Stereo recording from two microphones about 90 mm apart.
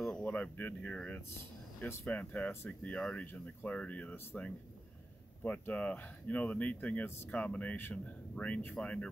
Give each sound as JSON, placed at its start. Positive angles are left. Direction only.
{"t": 0.0, "sound": "speech", "side_deg": 15}